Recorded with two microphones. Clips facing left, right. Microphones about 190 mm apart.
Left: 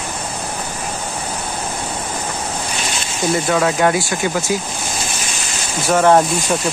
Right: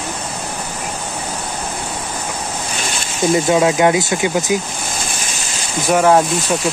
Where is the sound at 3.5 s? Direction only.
15° right (ahead or behind).